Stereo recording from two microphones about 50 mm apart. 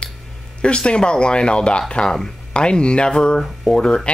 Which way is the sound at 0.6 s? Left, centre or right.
Left.